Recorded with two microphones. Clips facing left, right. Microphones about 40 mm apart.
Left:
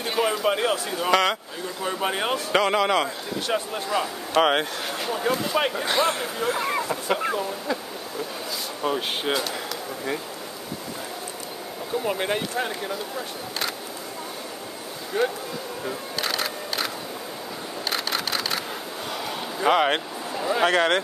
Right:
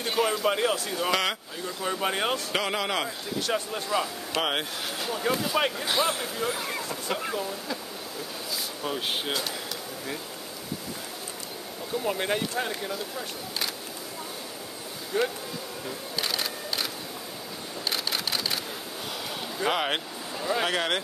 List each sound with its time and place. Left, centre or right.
0.0 s speech: centre
1.0 s speech: centre
6.1 s speech: centre
8.8 s speech: centre
12.0 s speech: centre
15.1 s speech: centre
16.2 s camera: centre
17.8 s a sound: centre
19.6 s speech: centre